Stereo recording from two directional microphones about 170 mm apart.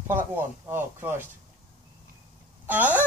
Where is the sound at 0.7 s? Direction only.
15° right (ahead or behind).